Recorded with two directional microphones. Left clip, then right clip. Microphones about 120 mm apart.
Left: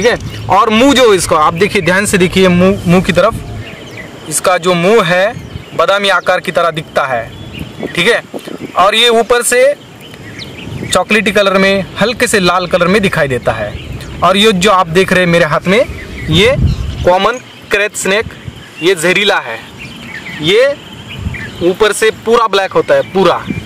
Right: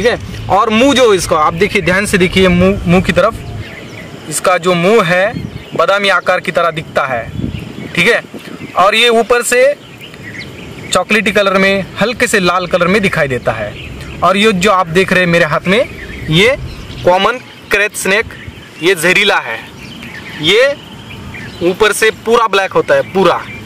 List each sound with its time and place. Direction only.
0.0 s speech: 20° left (ahead or behind)
10.9 s speech: 15° left (ahead or behind)